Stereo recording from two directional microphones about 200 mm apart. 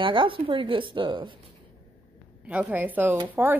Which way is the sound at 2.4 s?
10° right (ahead or behind).